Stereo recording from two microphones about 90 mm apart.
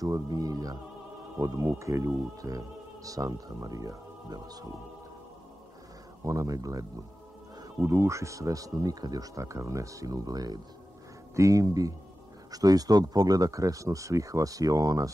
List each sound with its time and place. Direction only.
0.0 s music: 45° right (ahead or behind)
1.4 s speech: 35° right (ahead or behind)
6.2 s speech: 40° right (ahead or behind)